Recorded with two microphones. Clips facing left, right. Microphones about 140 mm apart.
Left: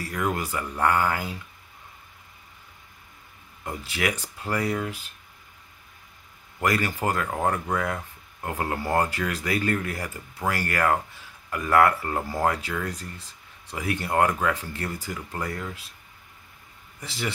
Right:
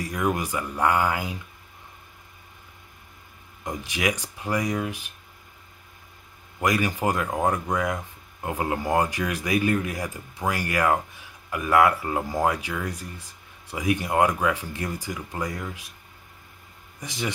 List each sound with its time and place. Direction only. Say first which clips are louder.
0.0 s speech: right 2 dB; 15° right (ahead or behind)
3.6 s speech: right 1 dB; 15° right (ahead or behind)
6.6 s speech: right 1 dB; 15° right (ahead or behind)
17.0 s speech: right 1 dB; 15° right (ahead or behind)